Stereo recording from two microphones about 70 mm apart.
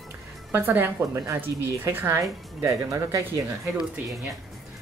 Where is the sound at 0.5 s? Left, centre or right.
Right.